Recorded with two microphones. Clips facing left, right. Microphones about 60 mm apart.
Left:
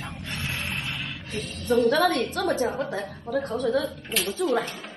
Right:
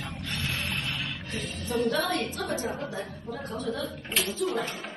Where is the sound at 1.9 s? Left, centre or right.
Left.